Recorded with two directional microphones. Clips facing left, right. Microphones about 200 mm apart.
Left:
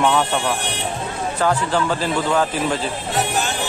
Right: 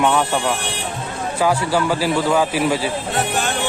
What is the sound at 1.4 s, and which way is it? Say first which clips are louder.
Speech: right 2 dB; 10° right (ahead or behind).